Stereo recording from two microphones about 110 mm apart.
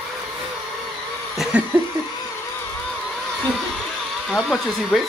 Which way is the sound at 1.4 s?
10° right (ahead or behind).